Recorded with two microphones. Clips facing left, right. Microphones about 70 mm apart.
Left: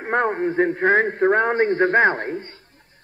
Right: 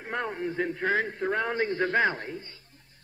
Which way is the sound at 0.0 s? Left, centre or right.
Left.